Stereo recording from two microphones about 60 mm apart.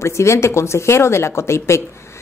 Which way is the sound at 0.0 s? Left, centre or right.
Left.